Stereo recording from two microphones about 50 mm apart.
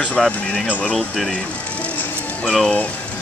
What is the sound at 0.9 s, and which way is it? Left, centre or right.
Speech, centre.